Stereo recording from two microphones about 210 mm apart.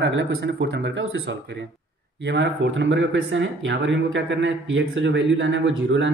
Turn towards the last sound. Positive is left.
turn(degrees=-60)  # may be behind; listen again after turning